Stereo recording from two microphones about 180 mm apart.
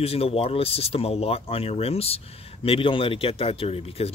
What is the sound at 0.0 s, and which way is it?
Speech, 35° left (ahead or behind).